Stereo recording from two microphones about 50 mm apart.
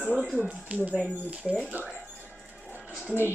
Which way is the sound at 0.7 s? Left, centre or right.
Right.